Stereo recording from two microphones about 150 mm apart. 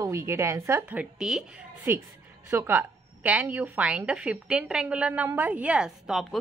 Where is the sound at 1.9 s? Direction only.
15° right (ahead or behind).